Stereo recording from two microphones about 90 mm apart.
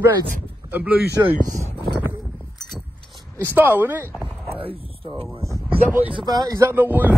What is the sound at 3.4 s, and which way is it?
Speech, 20° right (ahead or behind).